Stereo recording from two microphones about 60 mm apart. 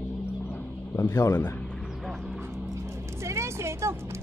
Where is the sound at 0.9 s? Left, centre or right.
Left.